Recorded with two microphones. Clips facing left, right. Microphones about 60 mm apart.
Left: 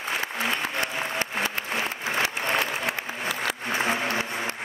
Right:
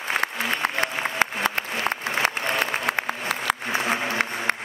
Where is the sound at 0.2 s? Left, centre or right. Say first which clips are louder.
Right 3 dB; right.